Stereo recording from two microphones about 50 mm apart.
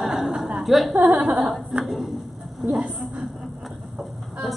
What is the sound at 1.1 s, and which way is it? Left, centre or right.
Speech, right.